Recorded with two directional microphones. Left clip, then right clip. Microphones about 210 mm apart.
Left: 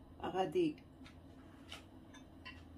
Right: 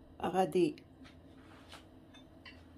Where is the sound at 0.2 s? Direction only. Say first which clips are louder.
Right 5 dB; 50° right (ahead or behind).